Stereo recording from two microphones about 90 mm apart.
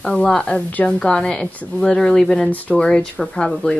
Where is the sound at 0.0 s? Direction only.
10° left (ahead or behind).